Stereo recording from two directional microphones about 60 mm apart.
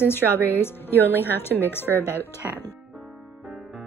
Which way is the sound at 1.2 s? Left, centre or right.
Left.